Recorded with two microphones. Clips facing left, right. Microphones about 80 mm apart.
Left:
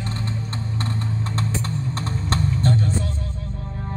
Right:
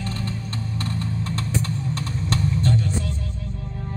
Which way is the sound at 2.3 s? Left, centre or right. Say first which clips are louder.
Left 1 dB; left.